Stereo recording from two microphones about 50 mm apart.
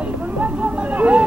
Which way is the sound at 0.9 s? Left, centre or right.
Right.